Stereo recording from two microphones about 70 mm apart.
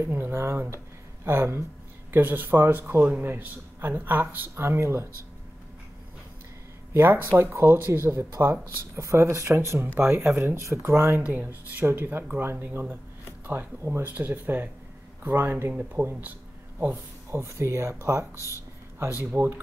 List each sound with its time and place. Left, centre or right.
0.0 s speech: right
6.9 s speech: right
15.7 s speech: right
16.9 s speech: right
19.3 s speech: right